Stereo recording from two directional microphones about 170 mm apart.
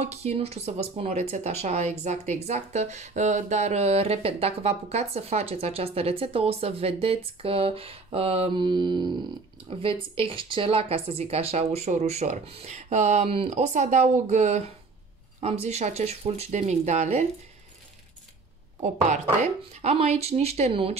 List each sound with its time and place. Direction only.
0.0 s a woman's voice: 40° right (ahead or behind)
18.8 s speech: 45° right (ahead or behind)